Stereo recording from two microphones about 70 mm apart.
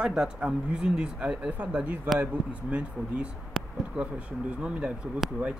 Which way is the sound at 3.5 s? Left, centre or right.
Centre.